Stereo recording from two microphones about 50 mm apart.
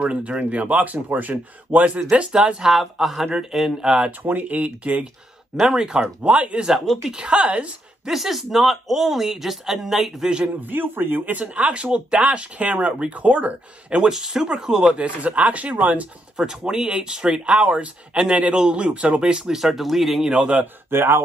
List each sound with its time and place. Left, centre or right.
0.0 s speech: right
2.1 s speech: right
2.7 s speech: centre
4.2 s speech: right
5.6 s speech: centre
6.2 s a woman's voice: right
8.1 s speech: centre
10.6 s speech: right
14.1 s speech: centre
15.0 s speech: right
16.3 s speech: centre
20.6 s speech: right